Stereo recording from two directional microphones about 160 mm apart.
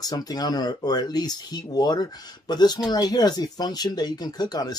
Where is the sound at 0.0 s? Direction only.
25° left (ahead or behind).